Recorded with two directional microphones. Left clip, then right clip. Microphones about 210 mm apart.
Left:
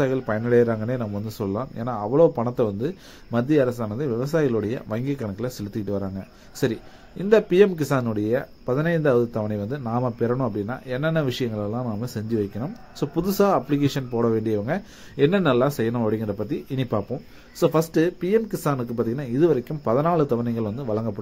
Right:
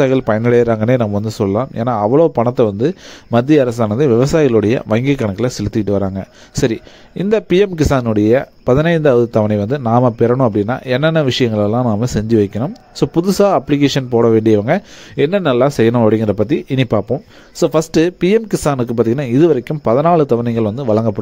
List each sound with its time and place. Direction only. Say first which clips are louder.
0.0 s speech: right 10 dB; 40° right (ahead or behind)